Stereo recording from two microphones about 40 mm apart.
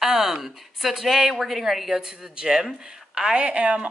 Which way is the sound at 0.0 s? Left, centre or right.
Centre.